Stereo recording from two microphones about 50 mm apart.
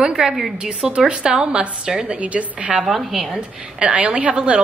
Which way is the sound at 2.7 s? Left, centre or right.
Centre.